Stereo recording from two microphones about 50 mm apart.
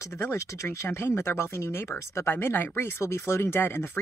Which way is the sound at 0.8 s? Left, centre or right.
Left.